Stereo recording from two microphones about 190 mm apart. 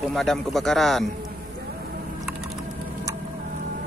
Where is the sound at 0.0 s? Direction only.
Centre (ahead or behind).